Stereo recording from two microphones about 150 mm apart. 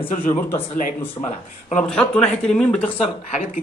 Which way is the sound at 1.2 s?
30° left (ahead or behind).